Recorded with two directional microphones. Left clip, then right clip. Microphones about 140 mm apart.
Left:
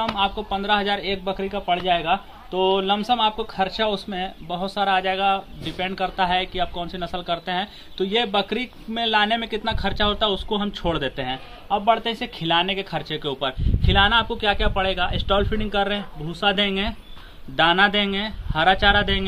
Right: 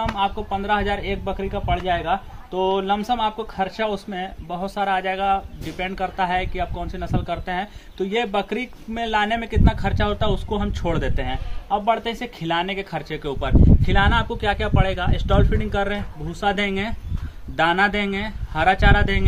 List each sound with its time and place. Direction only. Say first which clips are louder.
0.0 s speech: even; 15° right (ahead or behind)